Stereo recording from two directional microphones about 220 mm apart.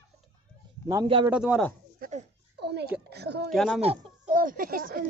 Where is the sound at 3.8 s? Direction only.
25° right (ahead or behind).